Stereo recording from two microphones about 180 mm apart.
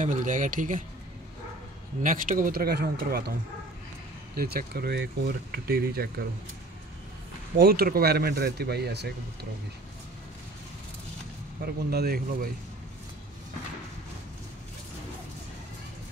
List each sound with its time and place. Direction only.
0.0 s speech: 45° right (ahead or behind)
2.0 s speech: 50° right (ahead or behind)
4.4 s speech: 55° right (ahead or behind)
7.5 s speech: 55° right (ahead or behind)
11.6 s speech: 60° right (ahead or behind)